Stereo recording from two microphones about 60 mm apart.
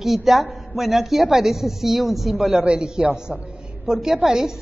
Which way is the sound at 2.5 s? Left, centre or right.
Centre.